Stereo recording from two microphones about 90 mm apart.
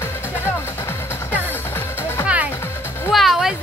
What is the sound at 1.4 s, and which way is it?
Music, 25° left (ahead or behind).